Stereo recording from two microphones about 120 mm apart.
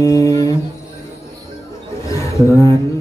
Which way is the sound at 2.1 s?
25° left (ahead or behind).